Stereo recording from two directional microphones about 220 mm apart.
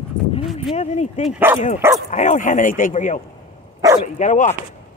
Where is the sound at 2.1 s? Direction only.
35° left (ahead or behind).